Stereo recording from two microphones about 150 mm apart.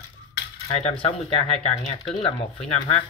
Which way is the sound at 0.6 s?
40° left (ahead or behind).